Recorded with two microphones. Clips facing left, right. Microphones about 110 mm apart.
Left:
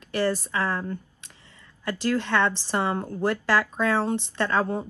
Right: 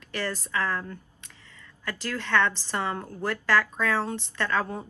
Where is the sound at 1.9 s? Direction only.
25° left (ahead or behind).